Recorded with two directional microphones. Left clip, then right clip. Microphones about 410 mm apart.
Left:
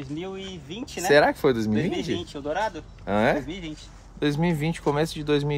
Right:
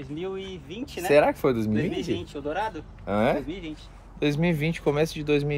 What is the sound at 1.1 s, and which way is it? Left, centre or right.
Speech, centre.